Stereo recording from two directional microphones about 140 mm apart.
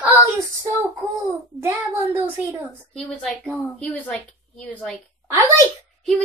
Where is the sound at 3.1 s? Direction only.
5° left (ahead or behind).